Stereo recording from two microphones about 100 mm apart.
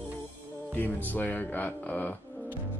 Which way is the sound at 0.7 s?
15° left (ahead or behind).